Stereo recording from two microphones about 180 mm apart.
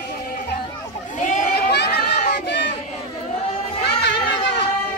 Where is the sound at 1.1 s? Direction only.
45° left (ahead or behind).